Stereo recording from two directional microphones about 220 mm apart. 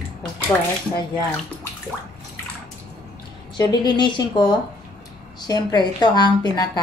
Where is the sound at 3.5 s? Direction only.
20° left (ahead or behind).